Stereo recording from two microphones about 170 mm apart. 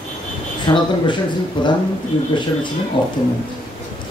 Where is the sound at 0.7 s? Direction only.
25° left (ahead or behind).